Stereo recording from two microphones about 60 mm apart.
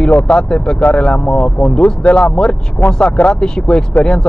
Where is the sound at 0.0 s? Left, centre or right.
Left.